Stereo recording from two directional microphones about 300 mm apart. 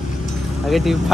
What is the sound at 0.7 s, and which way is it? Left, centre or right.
Speech, centre.